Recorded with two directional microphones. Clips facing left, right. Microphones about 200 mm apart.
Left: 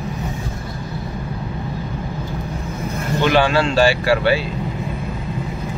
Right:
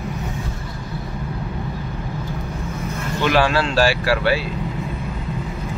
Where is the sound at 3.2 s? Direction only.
Centre (ahead or behind).